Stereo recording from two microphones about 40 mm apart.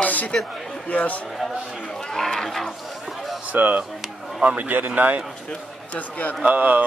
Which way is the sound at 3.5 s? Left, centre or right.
Right.